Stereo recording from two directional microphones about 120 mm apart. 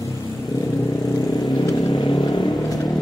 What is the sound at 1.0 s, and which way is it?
Vehicle, 30° left (ahead or behind).